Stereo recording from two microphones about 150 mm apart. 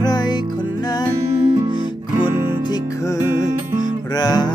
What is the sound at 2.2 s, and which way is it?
Music, 25° left (ahead or behind).